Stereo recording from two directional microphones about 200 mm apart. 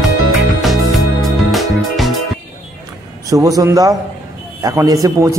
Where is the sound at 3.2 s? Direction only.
15° right (ahead or behind).